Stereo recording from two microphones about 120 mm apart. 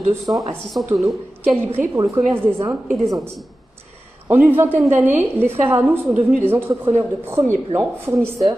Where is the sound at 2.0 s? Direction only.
20° right (ahead or behind).